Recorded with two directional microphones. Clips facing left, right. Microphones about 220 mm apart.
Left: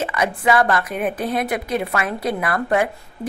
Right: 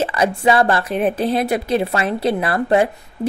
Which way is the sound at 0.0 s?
30° right (ahead or behind).